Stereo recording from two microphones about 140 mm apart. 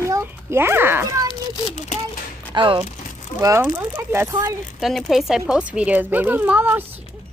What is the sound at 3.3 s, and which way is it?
A woman's voice, 20° right (ahead or behind).